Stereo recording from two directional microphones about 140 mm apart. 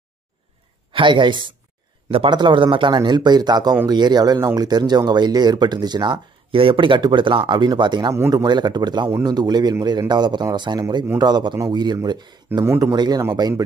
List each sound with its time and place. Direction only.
0.9 s speech: 35° right (ahead or behind)
12.6 s speech: 20° right (ahead or behind)
12.9 s speech: 30° right (ahead or behind)